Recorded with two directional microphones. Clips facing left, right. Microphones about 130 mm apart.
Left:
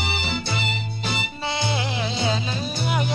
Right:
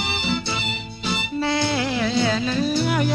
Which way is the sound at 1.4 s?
20° left (ahead or behind).